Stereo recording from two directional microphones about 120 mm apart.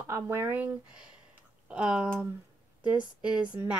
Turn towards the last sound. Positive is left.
turn(degrees=-10)  # may be behind; listen again after turning